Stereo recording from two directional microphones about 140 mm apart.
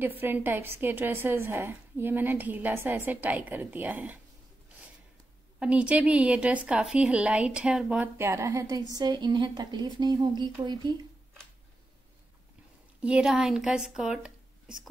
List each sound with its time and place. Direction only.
0.0 s a woman's voice: 15° right (ahead or behind)
5.6 s a woman's voice: 10° right (ahead or behind)
8.2 s a woman's voice: 20° right (ahead or behind)
13.0 s speech: 5° right (ahead or behind)